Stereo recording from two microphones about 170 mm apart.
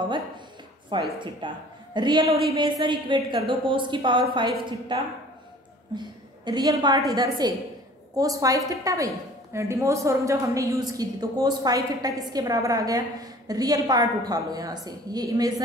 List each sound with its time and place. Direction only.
0.9 s a woman's voice: 25° right (ahead or behind)